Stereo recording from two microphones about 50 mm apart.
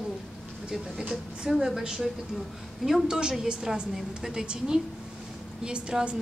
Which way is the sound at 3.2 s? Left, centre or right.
Centre.